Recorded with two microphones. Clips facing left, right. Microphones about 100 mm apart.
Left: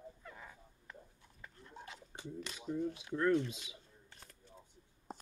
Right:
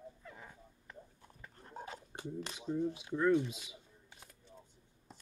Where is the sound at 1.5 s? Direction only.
45° right (ahead or behind).